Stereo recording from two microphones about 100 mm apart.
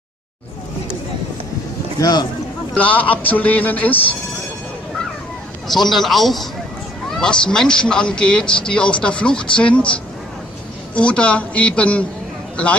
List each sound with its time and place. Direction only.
2.0 s speech: 45° left (ahead or behind)
2.7 s speech: 15° left (ahead or behind)
5.7 s a man's voice: centre (ahead or behind)
11.0 s speech: 10° left (ahead or behind)